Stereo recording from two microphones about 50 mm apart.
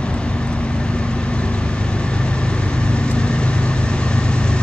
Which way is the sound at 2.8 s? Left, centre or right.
Centre.